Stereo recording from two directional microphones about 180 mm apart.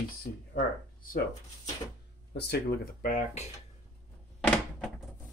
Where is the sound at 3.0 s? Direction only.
40° left (ahead or behind).